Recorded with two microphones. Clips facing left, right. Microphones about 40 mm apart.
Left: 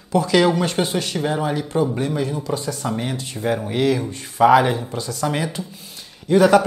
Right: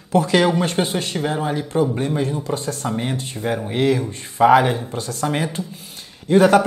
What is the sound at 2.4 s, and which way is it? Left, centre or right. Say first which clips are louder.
Speech: even; right.